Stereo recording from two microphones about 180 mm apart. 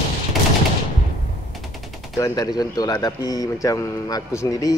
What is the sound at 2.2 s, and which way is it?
A man's voice, 20° left (ahead or behind).